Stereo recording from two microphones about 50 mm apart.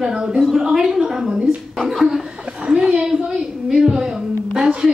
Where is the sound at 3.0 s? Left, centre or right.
Centre.